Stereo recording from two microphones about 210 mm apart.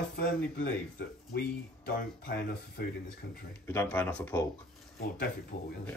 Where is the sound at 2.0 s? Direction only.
45° left (ahead or behind).